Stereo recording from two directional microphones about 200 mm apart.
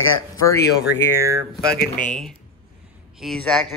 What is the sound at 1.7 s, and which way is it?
Speech, 45° left (ahead or behind).